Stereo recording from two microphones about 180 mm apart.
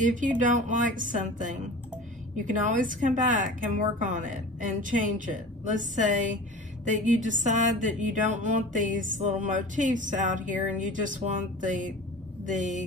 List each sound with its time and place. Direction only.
0.0 s speech: 45° right (ahead or behind)
2.6 s speech: 50° right (ahead or behind)